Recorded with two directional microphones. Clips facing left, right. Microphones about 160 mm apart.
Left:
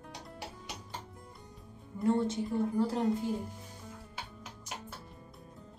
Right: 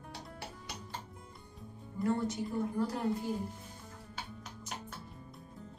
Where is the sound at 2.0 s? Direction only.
25° left (ahead or behind).